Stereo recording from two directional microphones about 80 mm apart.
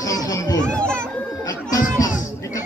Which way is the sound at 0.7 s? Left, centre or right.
Centre.